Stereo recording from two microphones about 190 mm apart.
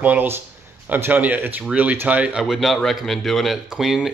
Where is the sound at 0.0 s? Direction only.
10° right (ahead or behind).